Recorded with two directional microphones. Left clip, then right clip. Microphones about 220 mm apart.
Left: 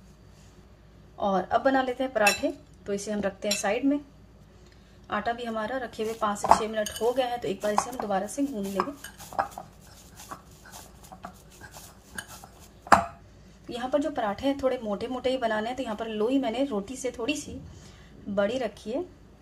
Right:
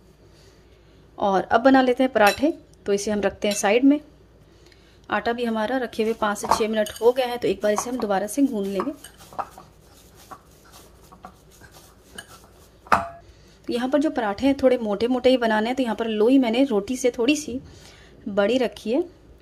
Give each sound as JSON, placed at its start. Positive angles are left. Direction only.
{"t": 1.2, "sound": "speech", "side_deg": -50}
{"t": 5.0, "sound": "speech", "side_deg": -50}
{"t": 10.3, "sound": "dog", "side_deg": 5}
{"t": 13.7, "sound": "speech", "side_deg": -45}